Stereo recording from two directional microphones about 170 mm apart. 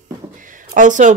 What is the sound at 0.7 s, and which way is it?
Speech, 50° right (ahead or behind).